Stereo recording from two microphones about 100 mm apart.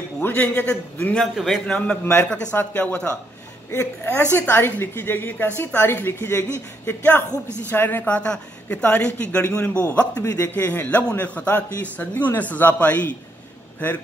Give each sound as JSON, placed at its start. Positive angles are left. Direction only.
{"t": 0.2, "sound": "speech", "side_deg": 20}
{"t": 1.2, "sound": "a man's voice", "side_deg": 0}
{"t": 1.8, "sound": "a woman's voice", "side_deg": 15}